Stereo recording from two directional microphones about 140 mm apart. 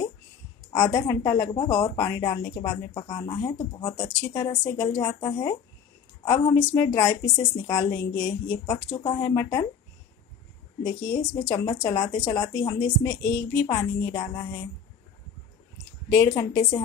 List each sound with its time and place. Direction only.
0.7 s speech: 25° left (ahead or behind)
8.7 s speech: 30° left (ahead or behind)
10.8 s speech: 25° left (ahead or behind)
16.1 s speech: 20° left (ahead or behind)